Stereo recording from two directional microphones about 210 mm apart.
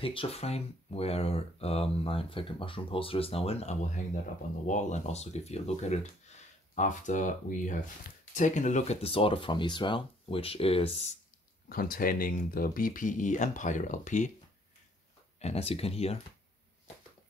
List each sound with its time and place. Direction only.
0.0 s speech: 25° left (ahead or behind)
11.7 s speech: 45° left (ahead or behind)
15.3 s speech: 30° left (ahead or behind)